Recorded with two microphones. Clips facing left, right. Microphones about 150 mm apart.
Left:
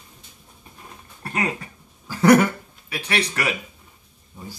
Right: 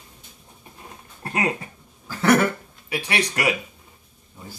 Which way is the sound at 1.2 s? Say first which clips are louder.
Right 1 dB; 20° right (ahead or behind).